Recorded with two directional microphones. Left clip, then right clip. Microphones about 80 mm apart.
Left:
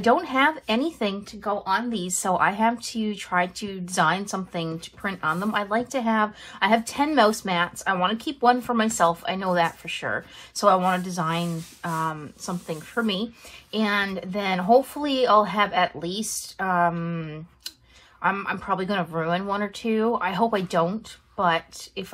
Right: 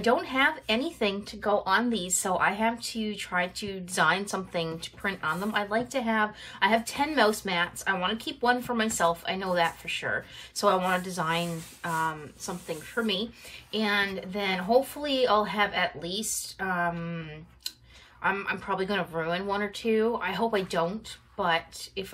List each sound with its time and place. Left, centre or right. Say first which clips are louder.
0.0 s speech: left 4 dB; left
1.0 s a woman's voice: left 1 dB; centre
2.1 s speech: left 5 dB; left
4.3 s a woman's voice: left 1 dB; centre
5.0 s speech: left 4 dB; left
12.6 s speech: left 3 dB; left
18.2 s speech: left 4 dB; left